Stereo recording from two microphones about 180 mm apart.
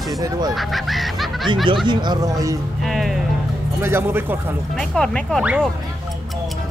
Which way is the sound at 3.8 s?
15° right (ahead or behind).